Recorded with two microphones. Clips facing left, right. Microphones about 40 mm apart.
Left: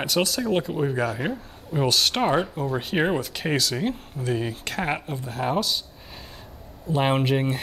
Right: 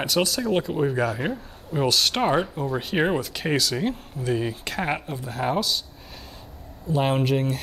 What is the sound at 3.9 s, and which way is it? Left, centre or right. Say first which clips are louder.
Speech: right 1 dB; left.